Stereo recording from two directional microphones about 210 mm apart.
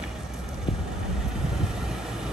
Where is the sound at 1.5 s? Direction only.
Centre (ahead or behind).